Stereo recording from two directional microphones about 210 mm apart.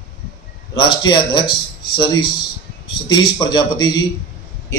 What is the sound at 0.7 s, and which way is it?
A man's voice, 20° left (ahead or behind).